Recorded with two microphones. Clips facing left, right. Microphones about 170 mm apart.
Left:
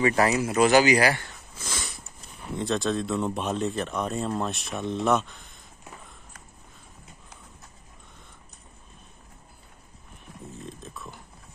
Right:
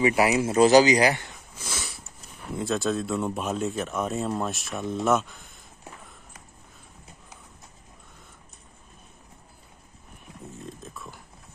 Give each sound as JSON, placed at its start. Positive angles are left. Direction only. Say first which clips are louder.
{"t": 0.0, "sound": "speech", "louder": "right 1 dB", "side_deg": -15}
{"t": 0.4, "sound": "speech", "louder": "right 5 dB", "side_deg": -30}
{"t": 0.8, "sound": "sniff", "louder": "right 1 dB", "side_deg": -20}
{"t": 2.5, "sound": "speech", "louder": "even", "side_deg": -5}
{"t": 10.8, "sound": "a sound", "louder": "even", "side_deg": 0}